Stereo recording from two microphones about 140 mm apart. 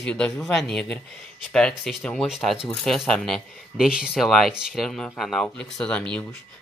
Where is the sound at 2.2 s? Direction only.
5° right (ahead or behind).